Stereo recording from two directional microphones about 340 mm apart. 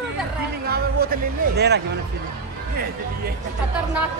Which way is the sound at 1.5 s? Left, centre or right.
Right.